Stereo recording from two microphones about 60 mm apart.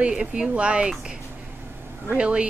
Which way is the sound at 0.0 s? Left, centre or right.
Centre.